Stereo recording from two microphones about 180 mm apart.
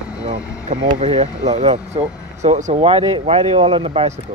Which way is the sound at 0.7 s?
40° right (ahead or behind).